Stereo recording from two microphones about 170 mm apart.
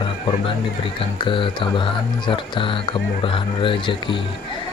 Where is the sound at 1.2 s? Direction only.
30° left (ahead or behind).